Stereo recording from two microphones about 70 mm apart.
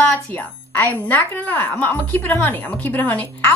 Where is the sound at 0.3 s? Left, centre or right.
Left.